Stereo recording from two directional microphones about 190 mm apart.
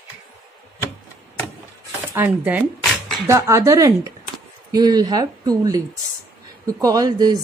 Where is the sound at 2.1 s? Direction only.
10° right (ahead or behind).